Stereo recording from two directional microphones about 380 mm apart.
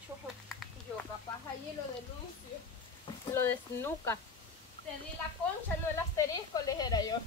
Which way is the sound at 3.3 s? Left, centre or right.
Centre.